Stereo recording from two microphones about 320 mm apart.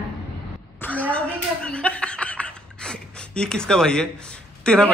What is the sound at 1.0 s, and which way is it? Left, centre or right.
Chuckle, centre.